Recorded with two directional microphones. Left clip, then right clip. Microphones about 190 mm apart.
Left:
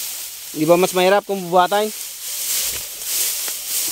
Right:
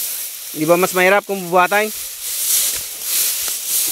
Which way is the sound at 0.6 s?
15° left (ahead or behind).